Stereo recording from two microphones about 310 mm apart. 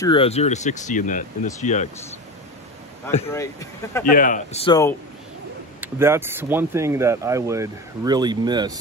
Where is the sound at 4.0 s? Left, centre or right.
Left.